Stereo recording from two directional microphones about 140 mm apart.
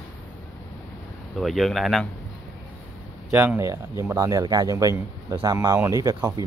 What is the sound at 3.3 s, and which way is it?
Speech, 15° right (ahead or behind).